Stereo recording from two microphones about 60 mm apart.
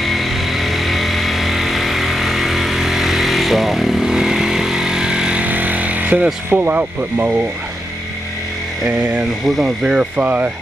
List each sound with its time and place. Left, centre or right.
0.0 s music: centre; by 6.2 s right
6.5 s speech: right
8.8 s speech: right